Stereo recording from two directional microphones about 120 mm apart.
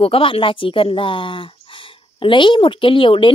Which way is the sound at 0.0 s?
50° left (ahead or behind).